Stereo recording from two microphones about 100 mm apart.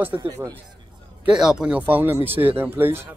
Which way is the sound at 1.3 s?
5° right (ahead or behind).